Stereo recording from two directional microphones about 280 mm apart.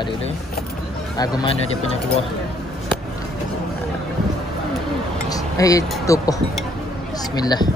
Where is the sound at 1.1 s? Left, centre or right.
Centre.